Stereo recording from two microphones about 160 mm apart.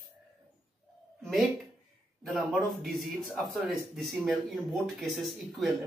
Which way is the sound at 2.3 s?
Centre (ahead or behind).